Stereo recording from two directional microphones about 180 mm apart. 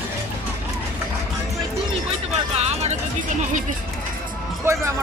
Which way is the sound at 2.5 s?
35° right (ahead or behind).